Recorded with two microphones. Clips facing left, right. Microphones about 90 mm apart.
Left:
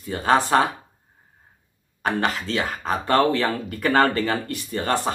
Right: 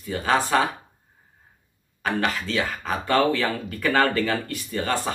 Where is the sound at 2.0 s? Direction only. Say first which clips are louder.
Left 1 dB; 30° left (ahead or behind).